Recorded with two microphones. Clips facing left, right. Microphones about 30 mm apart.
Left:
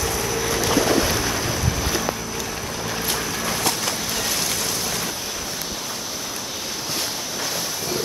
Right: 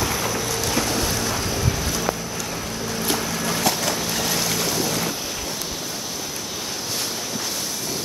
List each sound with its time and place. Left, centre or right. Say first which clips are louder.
0.7 s boat: left 5 dB; left
3.1 s boat: right 3 dB; centre